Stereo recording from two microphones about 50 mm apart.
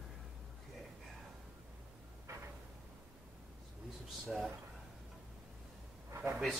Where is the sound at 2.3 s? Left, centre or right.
Right.